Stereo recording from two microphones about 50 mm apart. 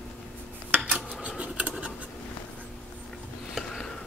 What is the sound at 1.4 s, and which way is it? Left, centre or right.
Scratch, right.